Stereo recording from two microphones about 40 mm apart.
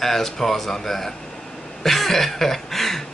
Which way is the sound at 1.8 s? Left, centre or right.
Centre.